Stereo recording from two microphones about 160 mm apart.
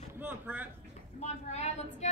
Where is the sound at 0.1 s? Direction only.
10° right (ahead or behind).